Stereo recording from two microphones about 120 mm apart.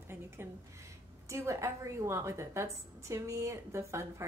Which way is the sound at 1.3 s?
25° right (ahead or behind).